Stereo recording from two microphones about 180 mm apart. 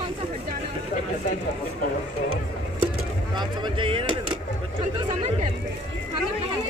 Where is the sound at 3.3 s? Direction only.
25° right (ahead or behind).